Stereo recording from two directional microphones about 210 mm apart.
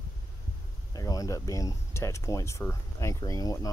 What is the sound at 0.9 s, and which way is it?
Speech, 15° left (ahead or behind).